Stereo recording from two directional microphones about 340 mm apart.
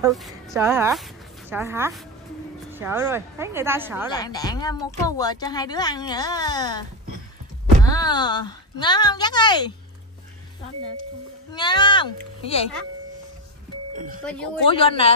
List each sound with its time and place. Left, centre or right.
0.0 s a woman's voice: centre
4.1 s a woman's voice: centre
11.5 s a woman's voice: centre
13.9 s speech: right
14.7 s a woman's voice: centre